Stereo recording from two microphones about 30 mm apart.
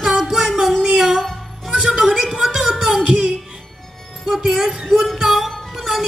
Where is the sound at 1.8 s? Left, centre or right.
Centre.